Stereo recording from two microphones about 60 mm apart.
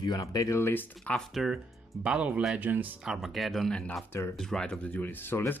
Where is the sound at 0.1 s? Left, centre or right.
Left.